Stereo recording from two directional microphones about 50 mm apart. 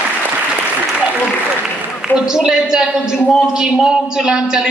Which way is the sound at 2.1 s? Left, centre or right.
Centre.